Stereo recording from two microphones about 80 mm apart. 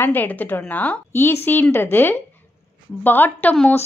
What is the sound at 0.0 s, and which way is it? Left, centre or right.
A woman's voice, left.